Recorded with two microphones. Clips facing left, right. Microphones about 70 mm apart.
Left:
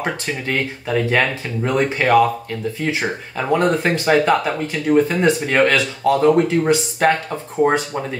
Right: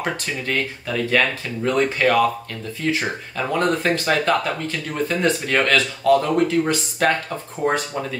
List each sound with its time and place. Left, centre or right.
0.0 s speech: left